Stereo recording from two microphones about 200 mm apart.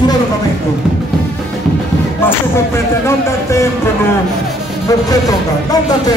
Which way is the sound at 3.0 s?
15° left (ahead or behind).